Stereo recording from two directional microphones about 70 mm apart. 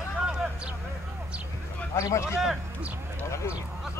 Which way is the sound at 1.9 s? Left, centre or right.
Left.